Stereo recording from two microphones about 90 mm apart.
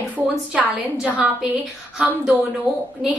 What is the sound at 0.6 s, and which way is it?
Speech, 15° right (ahead or behind).